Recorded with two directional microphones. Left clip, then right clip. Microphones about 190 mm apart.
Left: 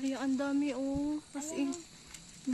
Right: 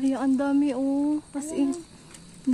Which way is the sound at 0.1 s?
Centre (ahead or behind).